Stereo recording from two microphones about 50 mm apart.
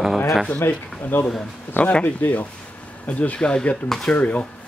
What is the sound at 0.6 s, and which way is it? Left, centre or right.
Speech, left.